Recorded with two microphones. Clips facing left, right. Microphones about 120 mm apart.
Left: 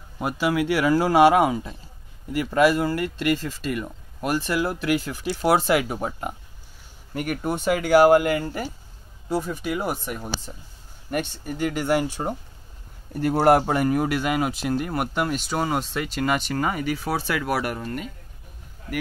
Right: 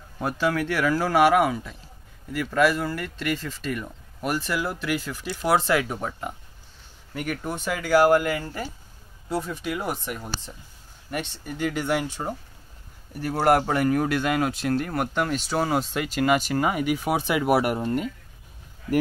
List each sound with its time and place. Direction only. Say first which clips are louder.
0.2 s speech: left 1 dB; 10° left (ahead or behind)
4.6 s speech: left 4 dB; 15° left (ahead or behind)
9.3 s speech: left 2 dB; centre (ahead or behind)
12.2 s speech: left 3 dB; 20° left (ahead or behind)
13.6 s speech: left 1 dB; 15° left (ahead or behind); by 18.0 s 25° right (ahead or behind)